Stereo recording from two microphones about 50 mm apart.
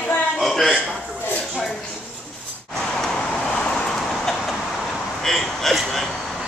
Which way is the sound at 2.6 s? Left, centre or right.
Centre.